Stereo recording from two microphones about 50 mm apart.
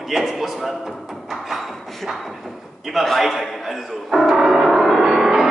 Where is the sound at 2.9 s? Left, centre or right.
Centre.